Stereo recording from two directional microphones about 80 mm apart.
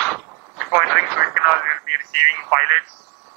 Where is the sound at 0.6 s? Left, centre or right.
Centre.